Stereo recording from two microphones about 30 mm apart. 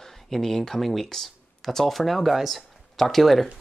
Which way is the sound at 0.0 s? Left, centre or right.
Centre.